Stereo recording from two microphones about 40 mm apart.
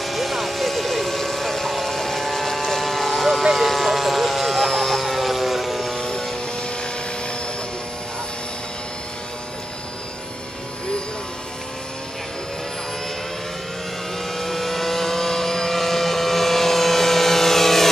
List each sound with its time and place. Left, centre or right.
0.0 s vehicle: centre
5.9 s vehicle: centre
14.3 s vehicle: centre